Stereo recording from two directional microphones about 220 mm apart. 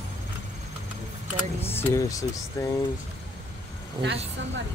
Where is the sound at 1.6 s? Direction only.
10° left (ahead or behind).